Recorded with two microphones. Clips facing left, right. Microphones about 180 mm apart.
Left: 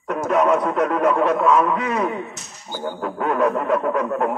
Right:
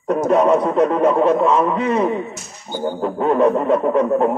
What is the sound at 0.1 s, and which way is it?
Music, 30° right (ahead or behind).